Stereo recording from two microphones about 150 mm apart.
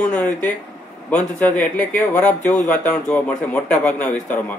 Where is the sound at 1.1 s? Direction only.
55° left (ahead or behind).